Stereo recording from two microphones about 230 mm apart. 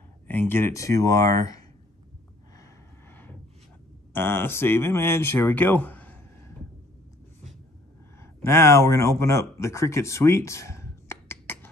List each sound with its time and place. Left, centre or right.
0.3 s speech: centre
4.1 s speech: centre
8.2 s speech: centre